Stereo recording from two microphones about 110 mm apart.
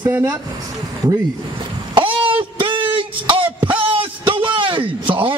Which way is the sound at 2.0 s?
50° right (ahead or behind).